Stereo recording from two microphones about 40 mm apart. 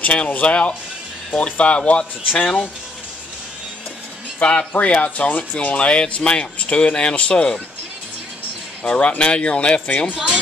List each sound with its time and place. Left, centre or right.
0.0 s speech: left
4.4 s speech: left
8.8 s speech: left